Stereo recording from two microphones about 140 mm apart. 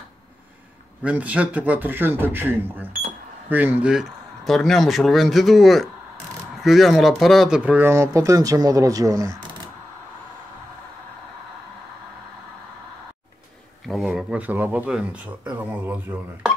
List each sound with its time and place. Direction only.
1.0 s a man's voice: 10° right (ahead or behind)
13.8 s a man's voice: centre (ahead or behind)